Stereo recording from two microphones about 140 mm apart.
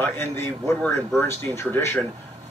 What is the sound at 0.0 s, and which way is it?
A man's voice, 15° left (ahead or behind).